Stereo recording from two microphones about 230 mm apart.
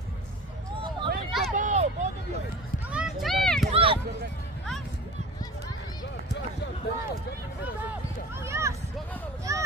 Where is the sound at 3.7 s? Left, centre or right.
Right.